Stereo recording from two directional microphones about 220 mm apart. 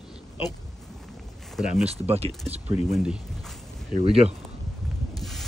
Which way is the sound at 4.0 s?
25° right (ahead or behind).